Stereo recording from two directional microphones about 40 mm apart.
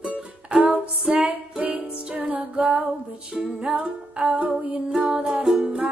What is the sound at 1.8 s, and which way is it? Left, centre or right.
Music, right.